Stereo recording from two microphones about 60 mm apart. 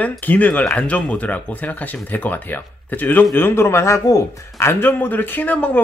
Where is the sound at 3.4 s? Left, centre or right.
Left.